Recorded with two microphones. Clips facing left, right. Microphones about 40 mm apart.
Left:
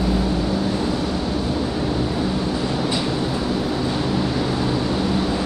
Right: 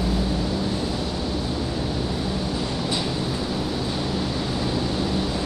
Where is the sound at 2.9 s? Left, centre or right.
Left.